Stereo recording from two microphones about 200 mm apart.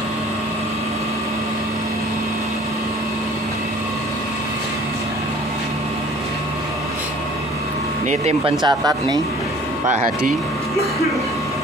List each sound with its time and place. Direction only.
8.1 s speech: 30° right (ahead or behind)
8.6 s speech: 20° right (ahead or behind)
9.8 s speech: 35° right (ahead or behind)